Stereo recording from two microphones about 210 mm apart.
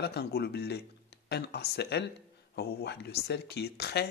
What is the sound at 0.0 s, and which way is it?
Speech, 50° left (ahead or behind).